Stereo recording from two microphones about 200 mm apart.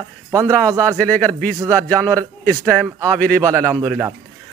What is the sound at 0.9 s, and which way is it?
Speech, 5° left (ahead or behind).